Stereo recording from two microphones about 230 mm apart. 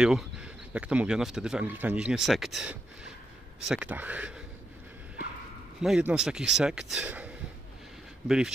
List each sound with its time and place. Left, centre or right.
0.0 s speech: centre
5.8 s speech: centre
8.3 s speech: centre